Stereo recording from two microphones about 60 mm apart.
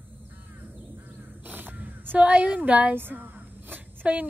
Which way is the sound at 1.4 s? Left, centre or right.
Right.